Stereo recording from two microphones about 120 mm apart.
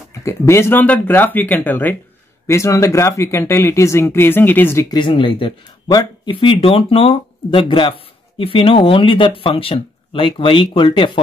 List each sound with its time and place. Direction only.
0.1 s speech: 25° left (ahead or behind)
4.8 s speech: 40° left (ahead or behind)